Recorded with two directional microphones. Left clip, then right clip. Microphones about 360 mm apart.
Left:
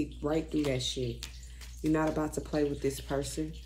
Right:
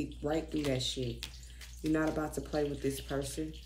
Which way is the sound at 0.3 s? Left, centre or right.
Centre.